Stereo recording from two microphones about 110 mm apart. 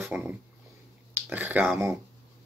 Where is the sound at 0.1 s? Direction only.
10° right (ahead or behind).